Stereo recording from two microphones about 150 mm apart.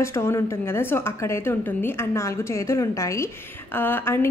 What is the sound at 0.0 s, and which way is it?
Speech, 20° left (ahead or behind).